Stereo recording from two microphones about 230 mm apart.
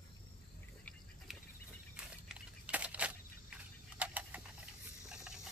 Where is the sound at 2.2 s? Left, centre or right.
Centre.